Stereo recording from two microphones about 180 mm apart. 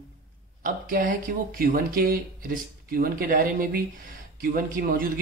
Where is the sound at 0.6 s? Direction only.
50° right (ahead or behind).